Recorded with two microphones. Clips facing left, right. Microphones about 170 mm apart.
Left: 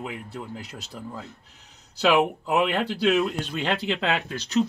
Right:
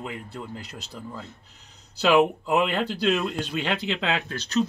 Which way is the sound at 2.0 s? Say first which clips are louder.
Right 1 dB; 5° left (ahead or behind).